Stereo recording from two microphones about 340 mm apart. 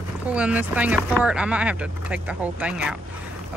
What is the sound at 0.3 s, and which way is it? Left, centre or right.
Speech, centre.